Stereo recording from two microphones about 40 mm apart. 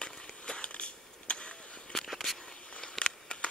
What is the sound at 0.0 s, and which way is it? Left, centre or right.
Skateboard, left.